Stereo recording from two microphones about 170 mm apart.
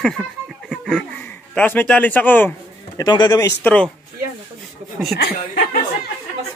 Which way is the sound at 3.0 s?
25° left (ahead or behind).